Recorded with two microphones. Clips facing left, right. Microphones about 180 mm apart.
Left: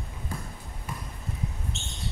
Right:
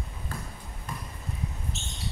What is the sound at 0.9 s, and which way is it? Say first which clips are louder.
Basketball bounce: even; 10° left (ahead or behind).